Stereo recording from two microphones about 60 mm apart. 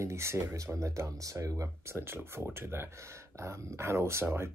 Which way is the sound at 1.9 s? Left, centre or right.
Right.